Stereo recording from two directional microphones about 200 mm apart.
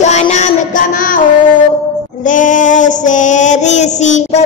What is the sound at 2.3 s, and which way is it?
Child singing, 40° left (ahead or behind).